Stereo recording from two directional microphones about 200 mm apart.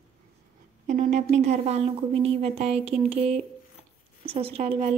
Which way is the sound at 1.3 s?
35° right (ahead or behind).